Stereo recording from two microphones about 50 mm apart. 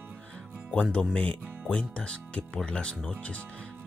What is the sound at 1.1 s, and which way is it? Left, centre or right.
Speech, left.